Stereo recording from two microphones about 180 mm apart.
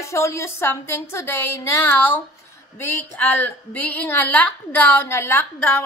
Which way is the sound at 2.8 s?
10° left (ahead or behind).